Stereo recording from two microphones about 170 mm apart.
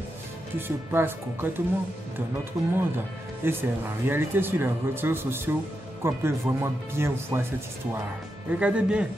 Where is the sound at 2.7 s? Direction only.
15° right (ahead or behind).